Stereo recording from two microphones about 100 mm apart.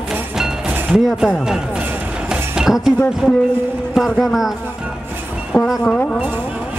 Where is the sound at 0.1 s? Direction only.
15° right (ahead or behind).